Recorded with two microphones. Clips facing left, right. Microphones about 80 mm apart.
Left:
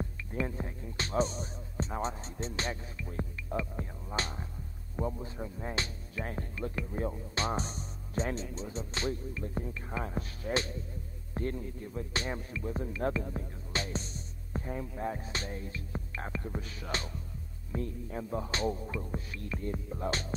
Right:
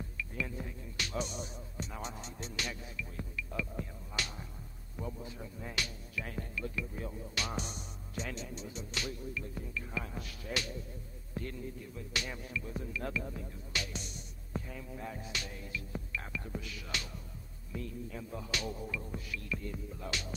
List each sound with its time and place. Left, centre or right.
0.2 s music: left
4.9 s speech: left